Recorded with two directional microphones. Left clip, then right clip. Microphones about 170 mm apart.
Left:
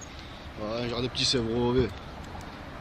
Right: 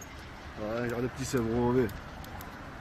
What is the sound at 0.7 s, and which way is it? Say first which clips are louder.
Speech: left 3 dB; 10° right (ahead or behind).